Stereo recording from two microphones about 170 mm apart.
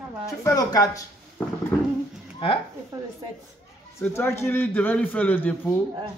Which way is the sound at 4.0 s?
15° left (ahead or behind).